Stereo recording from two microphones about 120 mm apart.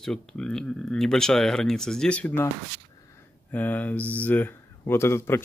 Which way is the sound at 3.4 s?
15° left (ahead or behind).